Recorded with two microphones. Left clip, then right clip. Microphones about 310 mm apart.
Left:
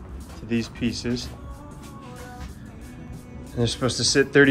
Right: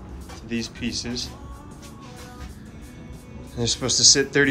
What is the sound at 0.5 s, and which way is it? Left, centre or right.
Speech, centre.